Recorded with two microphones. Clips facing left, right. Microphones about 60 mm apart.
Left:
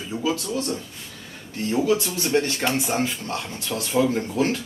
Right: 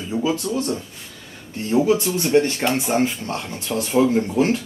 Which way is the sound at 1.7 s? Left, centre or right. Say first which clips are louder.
Right 4 dB; centre.